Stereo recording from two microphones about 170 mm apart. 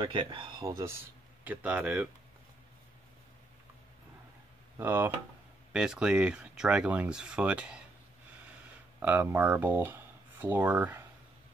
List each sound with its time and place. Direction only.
0.0 s speech: 30° right (ahead or behind)
1.4 s speech: 10° right (ahead or behind)
4.7 s speech: 15° right (ahead or behind)
9.0 s speech: 10° right (ahead or behind)